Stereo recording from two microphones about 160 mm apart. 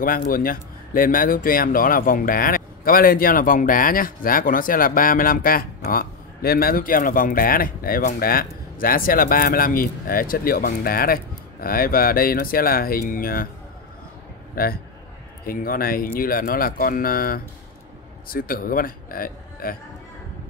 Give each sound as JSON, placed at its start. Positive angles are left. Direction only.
{"t": 0.0, "sound": "speech", "side_deg": 60}
{"t": 14.5, "sound": "a man's voice", "side_deg": 65}